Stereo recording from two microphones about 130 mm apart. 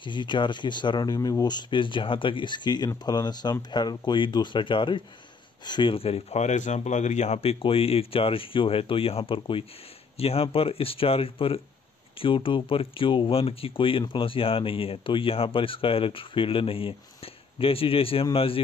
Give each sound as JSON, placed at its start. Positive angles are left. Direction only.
{"t": 0.0, "sound": "speech", "side_deg": 35}